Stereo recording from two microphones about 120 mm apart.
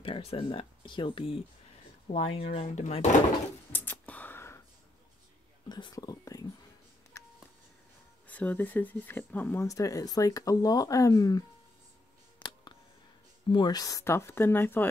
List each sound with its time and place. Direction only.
0.0 s speech: 50° left (ahead or behind); by 3.2 s 80° left
3.7 s a sound: 15° left (ahead or behind)
5.7 s whispering: 35° left (ahead or behind)
7.2 s telephone dialing: 25° left (ahead or behind)
8.3 s speech: 15° left (ahead or behind); by 11.4 s 30° left (ahead or behind)
12.4 s a sound: 40° left (ahead or behind)
13.5 s speech: 35° left (ahead or behind); by 14.9 s 15° left (ahead or behind)